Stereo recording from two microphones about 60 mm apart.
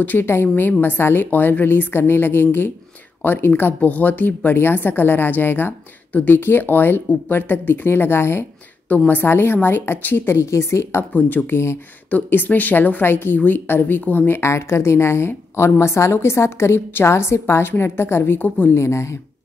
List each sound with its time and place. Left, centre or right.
0.0 s speech: left
8.8 s speech: left
11.1 s speech: left
11.5 s a woman's voice: left
12.1 s speech: left
14.4 s a woman's voice: left
18.8 s a woman's voice: left